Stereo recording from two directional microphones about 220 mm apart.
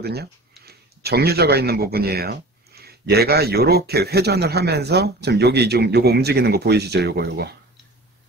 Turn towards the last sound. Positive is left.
turn(degrees=-45)  # may be behind; listen again after turning